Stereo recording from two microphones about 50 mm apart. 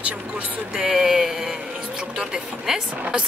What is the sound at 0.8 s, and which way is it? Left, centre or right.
Speech, centre.